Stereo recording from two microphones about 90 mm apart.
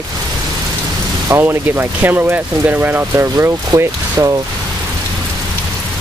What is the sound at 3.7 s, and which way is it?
Speech, 40° right (ahead or behind).